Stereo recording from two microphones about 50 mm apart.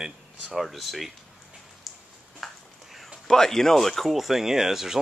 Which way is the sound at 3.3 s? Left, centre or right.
Centre.